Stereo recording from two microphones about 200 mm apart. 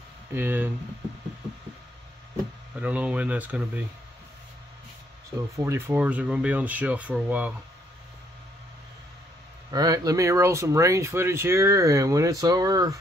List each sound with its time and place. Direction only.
0.3 s speech: 10° right (ahead or behind)
2.8 s speech: 5° right (ahead or behind)
5.6 s speech: 15° right (ahead or behind)
9.7 s speech: 20° right (ahead or behind)